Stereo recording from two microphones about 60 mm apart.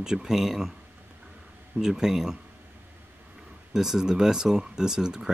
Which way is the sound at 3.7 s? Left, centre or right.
Centre.